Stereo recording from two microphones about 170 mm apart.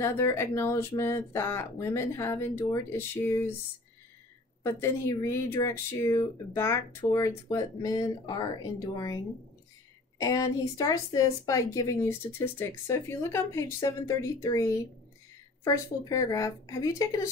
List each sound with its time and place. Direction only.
0.0 s speech: 15° left (ahead or behind)
4.7 s a woman's voice: 15° left (ahead or behind)
10.2 s a woman's voice: 20° left (ahead or behind)